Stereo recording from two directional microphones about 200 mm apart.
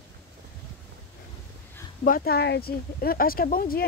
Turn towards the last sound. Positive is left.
turn(degrees=45)  # may be behind; listen again after turning